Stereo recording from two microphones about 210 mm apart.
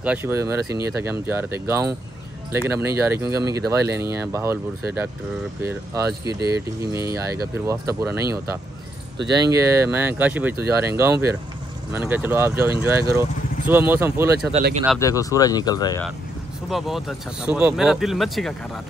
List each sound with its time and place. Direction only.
0.0 s speech: 10° right (ahead or behind)
14.5 s speech: 30° right (ahead or behind)
15.0 s speech: 15° left (ahead or behind)
16.6 s speech: centre (ahead or behind)